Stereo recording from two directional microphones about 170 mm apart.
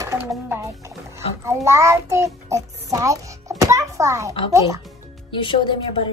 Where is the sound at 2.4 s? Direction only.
20° right (ahead or behind).